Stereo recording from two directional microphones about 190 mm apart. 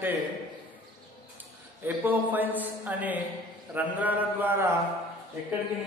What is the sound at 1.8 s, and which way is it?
A man's voice, 10° right (ahead or behind).